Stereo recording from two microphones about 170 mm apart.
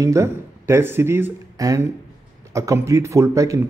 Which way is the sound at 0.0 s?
15° right (ahead or behind).